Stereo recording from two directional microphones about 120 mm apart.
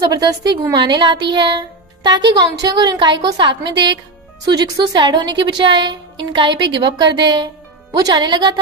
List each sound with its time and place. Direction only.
0.1 s a woman's voice: 35° right (ahead or behind)